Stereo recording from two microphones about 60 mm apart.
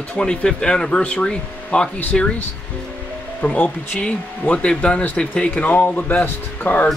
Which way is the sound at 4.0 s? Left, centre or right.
Centre.